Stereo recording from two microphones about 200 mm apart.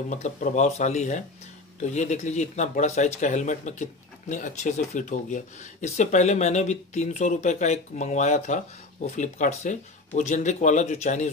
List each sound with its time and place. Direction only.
0.1 s speech: 35° left (ahead or behind)